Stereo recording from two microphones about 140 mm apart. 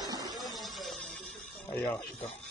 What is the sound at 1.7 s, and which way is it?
Speech, 15° left (ahead or behind).